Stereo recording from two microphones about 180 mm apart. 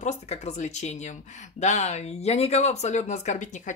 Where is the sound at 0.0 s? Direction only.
40° left (ahead or behind).